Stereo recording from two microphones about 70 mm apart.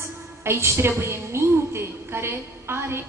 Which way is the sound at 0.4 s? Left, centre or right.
Right.